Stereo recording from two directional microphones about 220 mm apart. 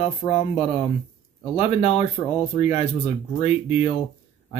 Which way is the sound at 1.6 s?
30° left (ahead or behind).